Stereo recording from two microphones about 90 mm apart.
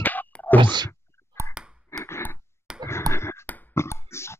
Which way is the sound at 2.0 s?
25° left (ahead or behind).